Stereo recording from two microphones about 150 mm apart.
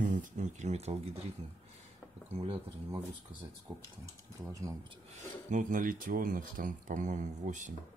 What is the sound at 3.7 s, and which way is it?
Speech, 25° right (ahead or behind).